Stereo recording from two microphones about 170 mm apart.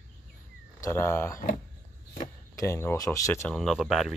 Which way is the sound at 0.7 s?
15° left (ahead or behind).